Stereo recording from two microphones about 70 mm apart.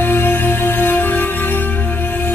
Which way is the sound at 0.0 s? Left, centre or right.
Left.